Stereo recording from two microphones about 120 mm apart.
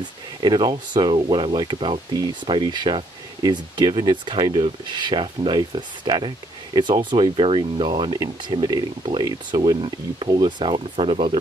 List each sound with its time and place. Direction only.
0.4 s speech: 40° right (ahead or behind)